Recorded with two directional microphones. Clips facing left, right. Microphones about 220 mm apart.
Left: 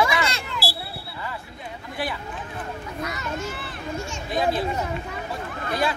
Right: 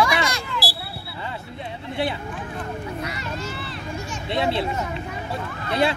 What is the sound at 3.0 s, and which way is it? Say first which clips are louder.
Children playing: even; 30° right (ahead or behind).